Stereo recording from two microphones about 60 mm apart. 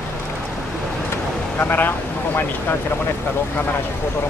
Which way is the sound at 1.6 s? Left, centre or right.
Left.